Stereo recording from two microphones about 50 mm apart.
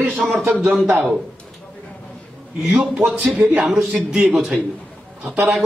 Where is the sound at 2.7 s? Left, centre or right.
Centre.